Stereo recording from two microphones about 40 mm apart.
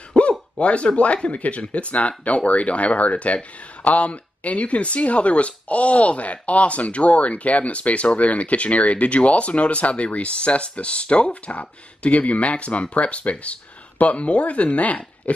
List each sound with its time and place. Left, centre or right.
0.1 s speech: left